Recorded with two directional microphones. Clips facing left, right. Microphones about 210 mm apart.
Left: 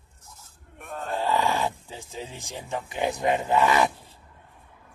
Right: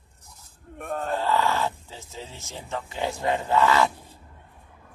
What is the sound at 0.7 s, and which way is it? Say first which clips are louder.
Speech: right 5 dB; 45° right (ahead or behind).